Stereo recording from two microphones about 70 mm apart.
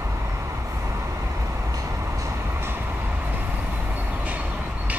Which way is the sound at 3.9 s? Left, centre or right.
Right.